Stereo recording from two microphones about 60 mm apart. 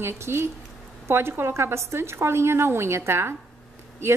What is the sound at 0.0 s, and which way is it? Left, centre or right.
A woman's voice, right.